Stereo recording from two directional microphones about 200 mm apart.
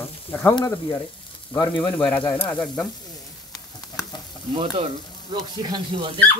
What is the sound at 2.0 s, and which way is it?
Speech, 10° left (ahead or behind).